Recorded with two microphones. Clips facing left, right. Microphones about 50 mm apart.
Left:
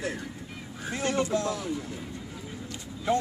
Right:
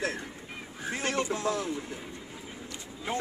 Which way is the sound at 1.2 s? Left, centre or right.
Right.